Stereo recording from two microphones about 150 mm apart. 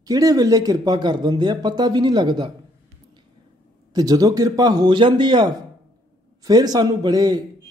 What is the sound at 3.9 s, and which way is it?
A man's voice, 25° right (ahead or behind).